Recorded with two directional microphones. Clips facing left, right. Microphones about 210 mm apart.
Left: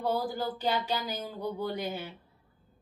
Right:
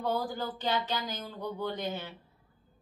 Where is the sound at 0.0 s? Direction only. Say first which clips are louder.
Left 2 dB; 10° left (ahead or behind).